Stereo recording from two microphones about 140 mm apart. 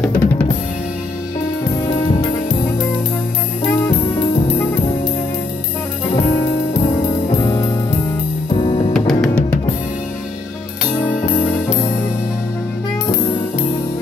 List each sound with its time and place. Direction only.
0.0 s drum kit: 10° left (ahead or behind)
7.4 s music: 25° left (ahead or behind)
8.9 s music: 5° left (ahead or behind)